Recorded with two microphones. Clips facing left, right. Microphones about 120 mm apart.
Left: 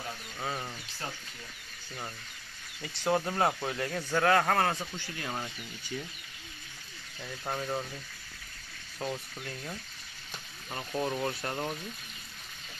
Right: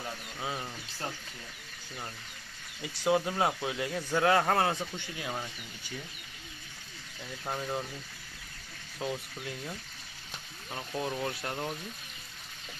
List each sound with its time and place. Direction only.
2.8 s speech: 10° right (ahead or behind)
7.4 s speech: centre (ahead or behind)
9.0 s speech: 5° right (ahead or behind)
10.7 s speech: 5° left (ahead or behind)